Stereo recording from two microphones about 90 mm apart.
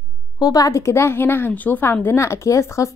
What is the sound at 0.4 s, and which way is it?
Speech, 45° left (ahead or behind).